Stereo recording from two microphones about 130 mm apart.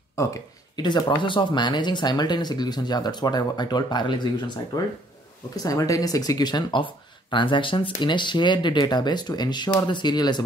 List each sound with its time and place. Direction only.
0.1 s speech: 25° left (ahead or behind)